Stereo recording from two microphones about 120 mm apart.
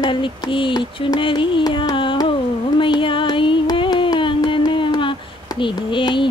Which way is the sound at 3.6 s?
40° left (ahead or behind).